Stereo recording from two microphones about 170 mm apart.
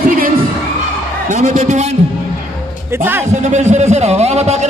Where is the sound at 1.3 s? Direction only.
45° right (ahead or behind).